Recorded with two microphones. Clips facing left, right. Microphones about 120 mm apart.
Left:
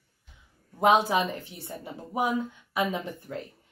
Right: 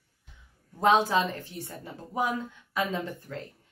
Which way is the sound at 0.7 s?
15° left (ahead or behind).